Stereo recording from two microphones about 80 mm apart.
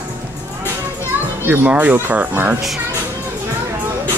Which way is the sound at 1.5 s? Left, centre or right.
Right.